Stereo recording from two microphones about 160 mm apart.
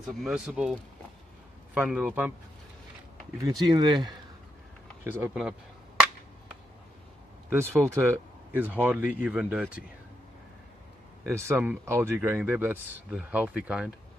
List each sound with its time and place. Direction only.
0.0 s speech: 5° right (ahead or behind)
3.4 s speech: 25° right (ahead or behind)
5.1 s speech: 10° right (ahead or behind)
7.5 s speech: 15° right (ahead or behind)
11.2 s speech: 15° right (ahead or behind)